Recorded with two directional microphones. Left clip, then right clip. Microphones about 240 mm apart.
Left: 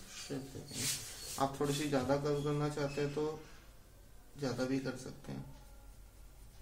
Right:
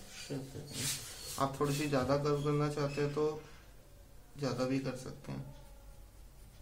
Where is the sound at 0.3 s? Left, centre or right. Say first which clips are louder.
Right 1 dB; centre.